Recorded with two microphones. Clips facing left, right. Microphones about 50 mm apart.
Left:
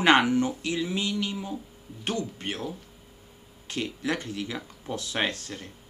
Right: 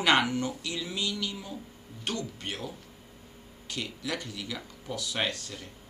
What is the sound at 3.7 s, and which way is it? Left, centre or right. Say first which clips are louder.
Speech: left 5 dB; left.